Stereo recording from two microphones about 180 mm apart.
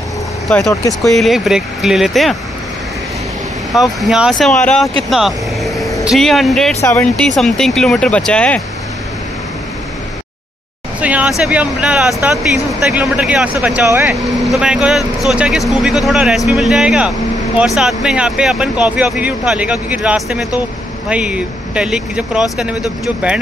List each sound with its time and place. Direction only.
0.7 s speech: 15° left (ahead or behind)
1.1 s speech: centre (ahead or behind)
3.7 s speech: centre (ahead or behind)
5.1 s vehicle: centre (ahead or behind)
6.0 s speech: centre (ahead or behind)
11.0 s speech: 10° right (ahead or behind)